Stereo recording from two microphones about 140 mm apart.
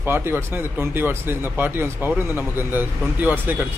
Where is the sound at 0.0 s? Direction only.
15° right (ahead or behind).